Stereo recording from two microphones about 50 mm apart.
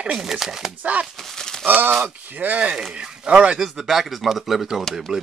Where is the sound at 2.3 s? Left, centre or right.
Right.